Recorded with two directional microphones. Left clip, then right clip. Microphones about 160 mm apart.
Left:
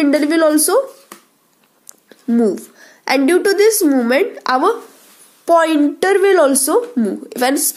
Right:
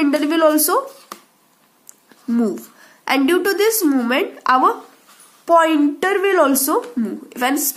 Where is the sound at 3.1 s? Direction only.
20° left (ahead or behind).